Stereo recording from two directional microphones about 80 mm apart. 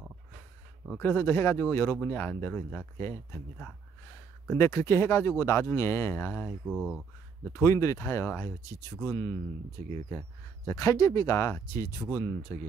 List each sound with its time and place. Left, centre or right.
0.9 s speech: left
4.6 s speech: left
6.6 s speech: centre
7.5 s speech: left
10.7 s speech: left